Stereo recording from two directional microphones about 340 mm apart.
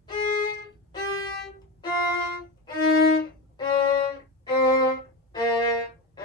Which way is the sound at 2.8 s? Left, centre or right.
Left.